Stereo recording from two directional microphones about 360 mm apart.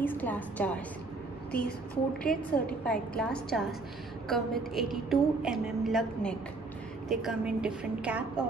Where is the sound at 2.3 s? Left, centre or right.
Centre.